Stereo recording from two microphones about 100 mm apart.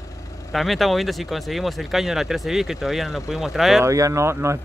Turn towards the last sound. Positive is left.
turn(degrees=-30)  # may be behind; listen again after turning